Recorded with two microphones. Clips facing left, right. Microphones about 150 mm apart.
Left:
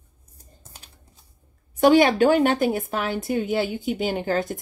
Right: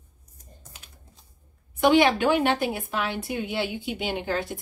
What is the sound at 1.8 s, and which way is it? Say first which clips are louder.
Speech: left 4 dB; 40° left (ahead or behind).